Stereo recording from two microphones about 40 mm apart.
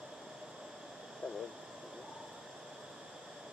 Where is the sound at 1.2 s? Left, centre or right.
Left.